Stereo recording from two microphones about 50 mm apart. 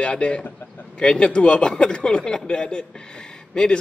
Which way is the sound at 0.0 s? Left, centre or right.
Left.